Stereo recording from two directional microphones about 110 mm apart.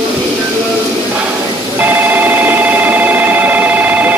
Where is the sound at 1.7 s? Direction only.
15° right (ahead or behind).